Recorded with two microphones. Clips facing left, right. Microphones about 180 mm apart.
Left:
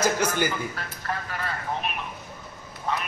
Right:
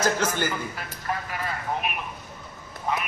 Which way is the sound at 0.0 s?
10° left (ahead or behind).